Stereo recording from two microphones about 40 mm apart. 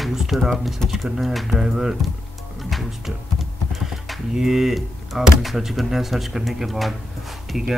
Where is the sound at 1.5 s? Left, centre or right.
Centre.